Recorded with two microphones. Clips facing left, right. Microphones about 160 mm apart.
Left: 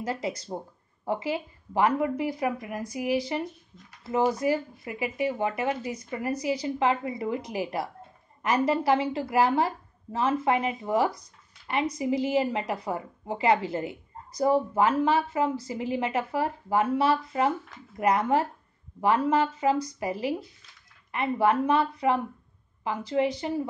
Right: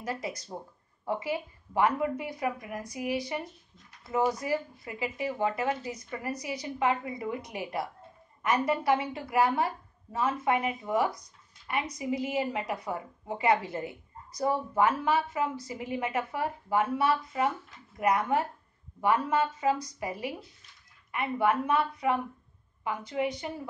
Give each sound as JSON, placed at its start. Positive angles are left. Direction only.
{"t": 0.0, "sound": "a woman's voice", "side_deg": 30}